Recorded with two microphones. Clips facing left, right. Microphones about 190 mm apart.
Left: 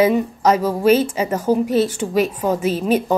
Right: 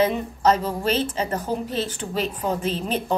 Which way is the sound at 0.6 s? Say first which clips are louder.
Left 7 dB; 40° left (ahead or behind).